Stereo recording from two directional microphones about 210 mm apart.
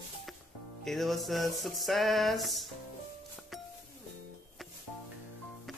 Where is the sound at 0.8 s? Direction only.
Centre (ahead or behind).